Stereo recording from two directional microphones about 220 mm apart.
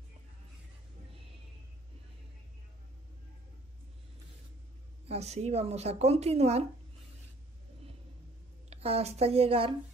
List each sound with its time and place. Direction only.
5.0 s a woman's voice: 30° right (ahead or behind)
8.6 s speech: 25° right (ahead or behind)